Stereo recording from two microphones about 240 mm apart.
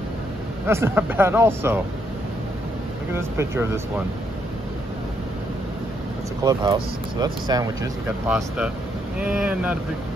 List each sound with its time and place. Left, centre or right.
0.7 s speech: centre
3.2 s speech: centre
6.4 s speech: centre
8.3 s speech: centre